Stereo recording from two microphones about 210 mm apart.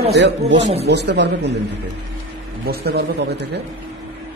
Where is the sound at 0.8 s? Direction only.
55° right (ahead or behind).